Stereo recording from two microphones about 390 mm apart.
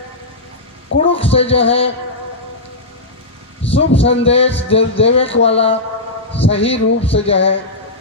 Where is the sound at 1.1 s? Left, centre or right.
Centre.